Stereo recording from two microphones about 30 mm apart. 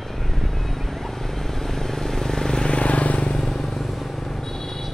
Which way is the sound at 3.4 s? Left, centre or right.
Centre.